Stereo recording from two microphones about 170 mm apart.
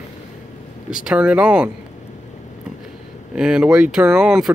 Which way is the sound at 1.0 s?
5° right (ahead or behind).